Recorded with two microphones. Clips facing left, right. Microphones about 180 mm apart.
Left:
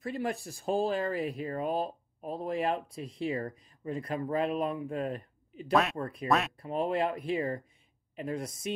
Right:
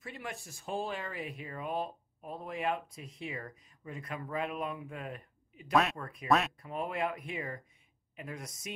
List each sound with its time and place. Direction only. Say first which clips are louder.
0.0 s speech: left 10 dB; 35° left (ahead or behind)
5.7 s speech: left 2 dB; centre (ahead or behind)
5.9 s speech: left 8 dB; 35° left (ahead or behind)
6.2 s speech: even; centre (ahead or behind)
6.6 s speech: left 5 dB; 30° left (ahead or behind)